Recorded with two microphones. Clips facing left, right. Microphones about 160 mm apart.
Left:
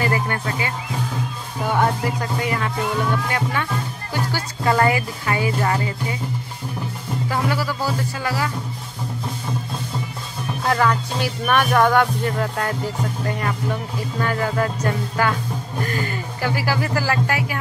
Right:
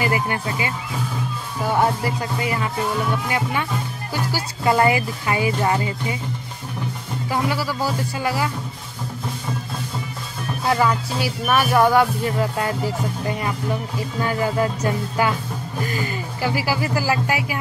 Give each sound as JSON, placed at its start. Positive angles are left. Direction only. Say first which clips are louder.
{"t": 0.0, "sound": "speech", "louder": "even", "side_deg": -15}
{"t": 7.2, "sound": "speech", "louder": "right 1 dB", "side_deg": -10}
{"t": 10.6, "sound": "speech", "louder": "even", "side_deg": -5}